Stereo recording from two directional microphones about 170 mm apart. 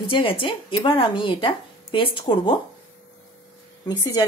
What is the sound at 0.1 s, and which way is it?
Speech, 30° left (ahead or behind).